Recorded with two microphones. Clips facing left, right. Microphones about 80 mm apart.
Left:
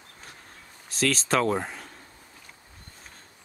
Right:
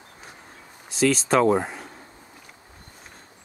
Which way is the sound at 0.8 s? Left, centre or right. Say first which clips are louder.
Right 5 dB; centre.